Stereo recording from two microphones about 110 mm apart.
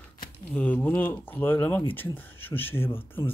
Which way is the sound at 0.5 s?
10° left (ahead or behind).